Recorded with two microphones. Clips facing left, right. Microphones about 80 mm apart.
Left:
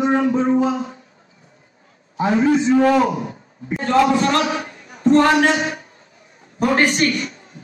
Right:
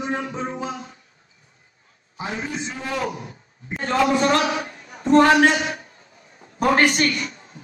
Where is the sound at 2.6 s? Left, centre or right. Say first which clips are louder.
Left 15 dB; left.